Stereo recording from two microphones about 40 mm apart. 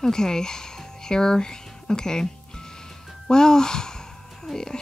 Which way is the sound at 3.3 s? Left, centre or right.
Centre.